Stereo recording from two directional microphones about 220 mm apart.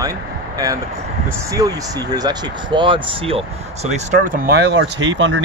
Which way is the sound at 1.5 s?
15° right (ahead or behind).